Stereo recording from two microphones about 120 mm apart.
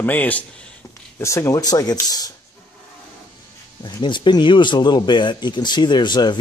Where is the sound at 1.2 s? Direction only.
25° left (ahead or behind).